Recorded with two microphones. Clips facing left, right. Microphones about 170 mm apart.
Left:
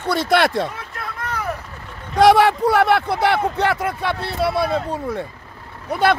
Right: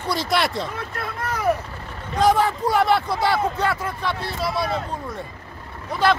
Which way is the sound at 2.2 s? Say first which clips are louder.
Left 6 dB; 80° left.